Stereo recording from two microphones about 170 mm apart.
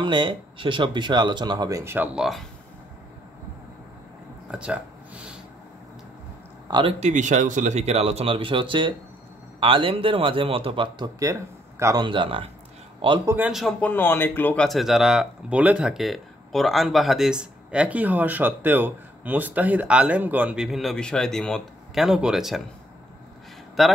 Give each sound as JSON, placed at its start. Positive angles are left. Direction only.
{"t": 0.0, "sound": "speech", "side_deg": -25}
{"t": 2.1, "sound": "speech", "side_deg": 0}
{"t": 4.5, "sound": "a sound", "side_deg": -5}
{"t": 6.7, "sound": "speech", "side_deg": -30}
{"t": 7.0, "sound": "speech", "side_deg": -45}
{"t": 13.2, "sound": "speech", "side_deg": -15}
{"t": 13.5, "sound": "speech", "side_deg": 0}
{"t": 23.8, "sound": "speech", "side_deg": 0}